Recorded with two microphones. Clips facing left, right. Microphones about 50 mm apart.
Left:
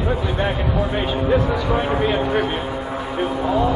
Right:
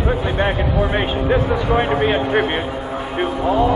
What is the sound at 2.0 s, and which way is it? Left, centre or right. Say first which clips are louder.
Vehicle: right 2 dB; right.